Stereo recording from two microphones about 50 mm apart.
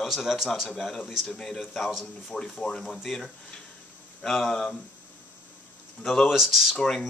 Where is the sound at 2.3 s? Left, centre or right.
Centre.